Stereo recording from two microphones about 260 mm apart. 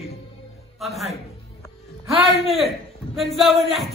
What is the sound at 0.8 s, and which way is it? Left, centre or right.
Speech, centre.